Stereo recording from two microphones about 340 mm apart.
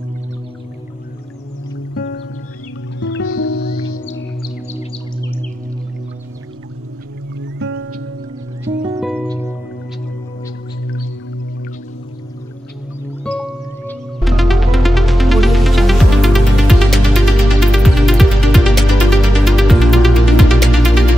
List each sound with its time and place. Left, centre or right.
2.0 s music: left
7.3 s music: right
8.6 s music: centre
13.2 s music: centre